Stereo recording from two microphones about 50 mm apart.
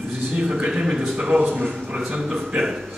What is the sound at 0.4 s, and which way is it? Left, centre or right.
A man's voice, centre.